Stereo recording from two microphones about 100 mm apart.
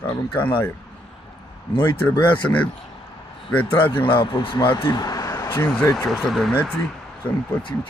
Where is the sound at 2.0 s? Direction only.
15° left (ahead or behind).